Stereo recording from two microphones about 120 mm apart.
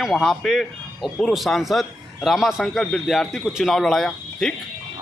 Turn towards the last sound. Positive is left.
turn(degrees=5)  # may be behind; listen again after turning